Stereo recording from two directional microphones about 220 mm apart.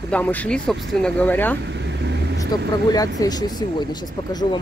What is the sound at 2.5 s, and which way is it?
Speech, 20° left (ahead or behind).